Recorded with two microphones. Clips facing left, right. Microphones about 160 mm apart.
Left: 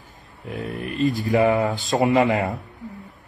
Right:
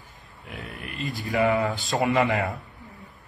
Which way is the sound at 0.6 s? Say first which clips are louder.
Left 10 dB; 20° left (ahead or behind).